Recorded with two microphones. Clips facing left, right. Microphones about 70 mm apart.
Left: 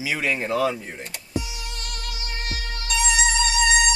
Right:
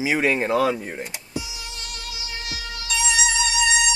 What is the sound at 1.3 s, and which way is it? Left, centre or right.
Music, left.